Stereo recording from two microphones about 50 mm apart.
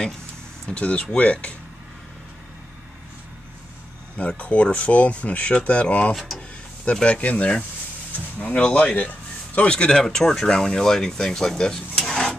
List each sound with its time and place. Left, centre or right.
0.7 s speech: left
4.4 s speech: left
6.1 s speech: centre
6.8 s speech: left
9.7 s speech: centre